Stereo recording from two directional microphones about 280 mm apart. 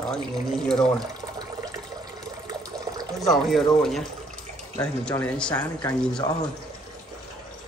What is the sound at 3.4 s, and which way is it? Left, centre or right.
Speech, centre.